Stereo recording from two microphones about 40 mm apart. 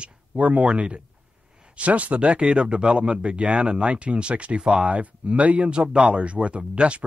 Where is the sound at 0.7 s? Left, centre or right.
Right.